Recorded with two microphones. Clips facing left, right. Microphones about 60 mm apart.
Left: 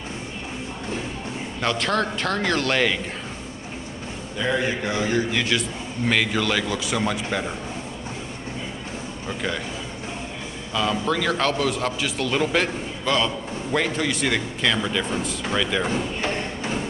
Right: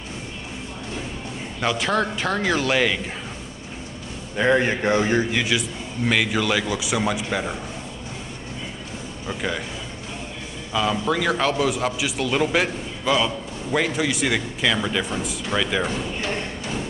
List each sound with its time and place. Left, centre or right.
1.6 s a man's voice: centre
4.4 s speech: right
5.3 s a man's voice: centre
9.3 s a man's voice: centre
10.7 s a man's voice: centre